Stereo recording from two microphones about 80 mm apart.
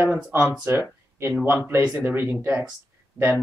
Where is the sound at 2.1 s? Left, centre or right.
Right.